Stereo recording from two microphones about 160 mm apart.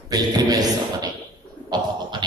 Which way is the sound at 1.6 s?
25° right (ahead or behind).